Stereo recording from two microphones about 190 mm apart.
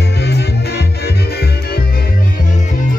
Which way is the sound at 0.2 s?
60° left (ahead or behind).